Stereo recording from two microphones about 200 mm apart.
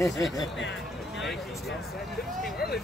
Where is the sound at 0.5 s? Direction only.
65° left (ahead or behind).